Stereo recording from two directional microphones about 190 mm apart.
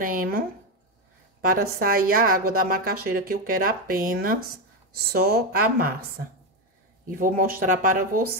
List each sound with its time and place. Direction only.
0.0 s a woman's voice: 50° right (ahead or behind)